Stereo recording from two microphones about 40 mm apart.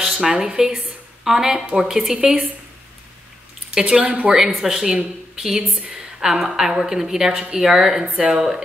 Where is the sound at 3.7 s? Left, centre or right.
Centre.